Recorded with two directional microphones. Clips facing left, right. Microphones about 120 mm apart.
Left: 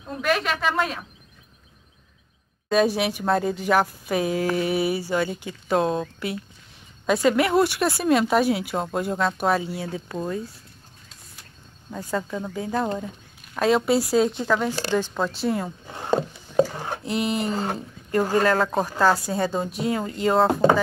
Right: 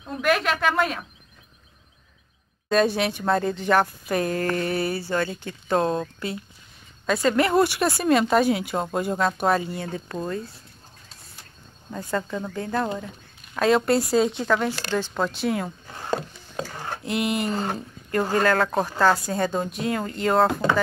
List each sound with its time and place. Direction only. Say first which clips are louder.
0.1 s speech: right 1 dB; centre (ahead or behind)
2.7 s speech: even; 5° left (ahead or behind)
11.9 s speech: even; 5° left (ahead or behind)
15.9 s speech: left 6 dB; 20° left (ahead or behind)
16.5 s a sound: left 10 dB; 10° left (ahead or behind)
17.0 s speech: even; 35° left (ahead or behind)
17.5 s speech: even; centre (ahead or behind)